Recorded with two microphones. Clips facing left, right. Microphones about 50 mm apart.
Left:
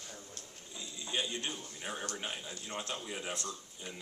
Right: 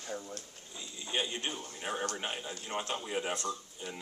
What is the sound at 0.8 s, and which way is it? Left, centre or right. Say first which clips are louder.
A man's voice: right 2 dB; right.